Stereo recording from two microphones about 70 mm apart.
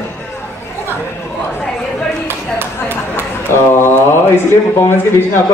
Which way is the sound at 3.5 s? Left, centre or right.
Left.